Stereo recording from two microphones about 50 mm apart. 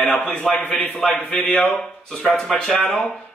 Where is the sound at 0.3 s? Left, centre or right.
Left.